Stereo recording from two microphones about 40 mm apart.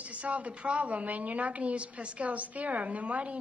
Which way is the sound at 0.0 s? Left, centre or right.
Right.